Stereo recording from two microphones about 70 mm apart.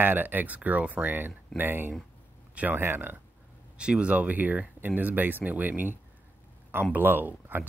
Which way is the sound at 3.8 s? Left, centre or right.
Centre.